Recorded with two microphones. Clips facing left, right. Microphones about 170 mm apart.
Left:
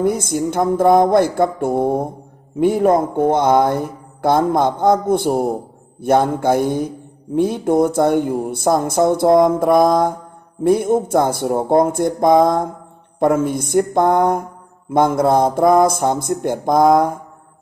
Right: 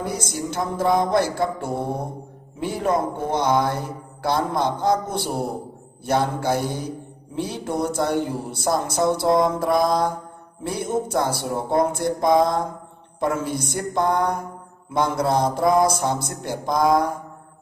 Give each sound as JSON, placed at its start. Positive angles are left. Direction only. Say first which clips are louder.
{"t": 0.0, "sound": "speech", "louder": "left 9 dB", "side_deg": 55}